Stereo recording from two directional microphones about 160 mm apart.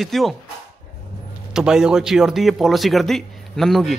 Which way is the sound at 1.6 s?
5° right (ahead or behind).